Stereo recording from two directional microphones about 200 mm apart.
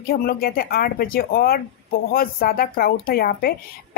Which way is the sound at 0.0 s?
50° left (ahead or behind).